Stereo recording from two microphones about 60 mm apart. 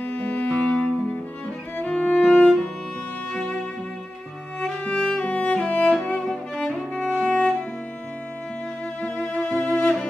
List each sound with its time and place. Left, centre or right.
0.0 s music: left
4.8 s music: centre
9.0 s music: centre